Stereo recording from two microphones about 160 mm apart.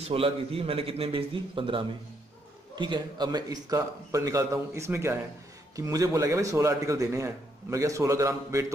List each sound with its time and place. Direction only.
0.0 s a man's voice: 35° right (ahead or behind); by 8.7 s 20° right (ahead or behind)